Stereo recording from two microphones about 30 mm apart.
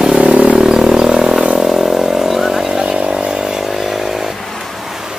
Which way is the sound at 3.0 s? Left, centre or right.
Right.